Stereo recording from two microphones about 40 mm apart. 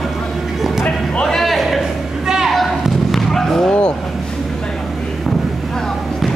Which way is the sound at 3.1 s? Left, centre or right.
Centre.